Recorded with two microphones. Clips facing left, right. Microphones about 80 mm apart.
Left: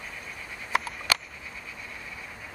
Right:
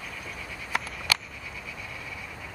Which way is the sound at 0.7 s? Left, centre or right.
Left.